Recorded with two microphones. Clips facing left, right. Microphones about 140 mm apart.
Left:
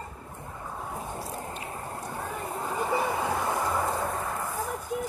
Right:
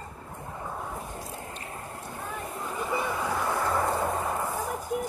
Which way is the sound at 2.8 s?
40° left (ahead or behind).